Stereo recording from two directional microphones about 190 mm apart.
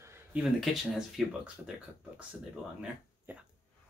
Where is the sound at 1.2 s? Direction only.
Centre (ahead or behind).